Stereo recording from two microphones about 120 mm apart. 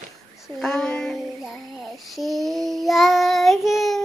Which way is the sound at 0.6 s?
5° left (ahead or behind).